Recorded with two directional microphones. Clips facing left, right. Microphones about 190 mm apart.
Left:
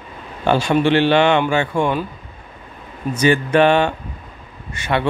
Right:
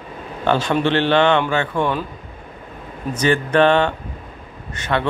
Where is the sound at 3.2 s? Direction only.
10° left (ahead or behind).